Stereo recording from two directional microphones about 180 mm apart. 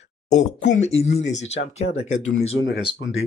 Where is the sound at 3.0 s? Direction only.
90° left.